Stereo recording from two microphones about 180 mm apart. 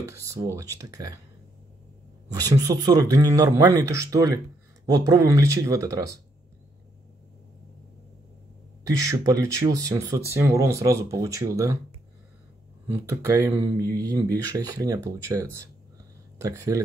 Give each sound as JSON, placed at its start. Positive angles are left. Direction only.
{"t": 0.1, "sound": "speech", "side_deg": -15}
{"t": 2.3, "sound": "speech", "side_deg": -20}
{"t": 8.8, "sound": "speech", "side_deg": -15}
{"t": 12.8, "sound": "speech", "side_deg": -20}